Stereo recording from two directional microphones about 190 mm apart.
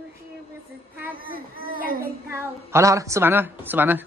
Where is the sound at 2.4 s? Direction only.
15° right (ahead or behind).